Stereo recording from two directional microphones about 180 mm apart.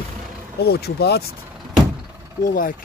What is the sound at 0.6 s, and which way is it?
Speech, 65° left (ahead or behind).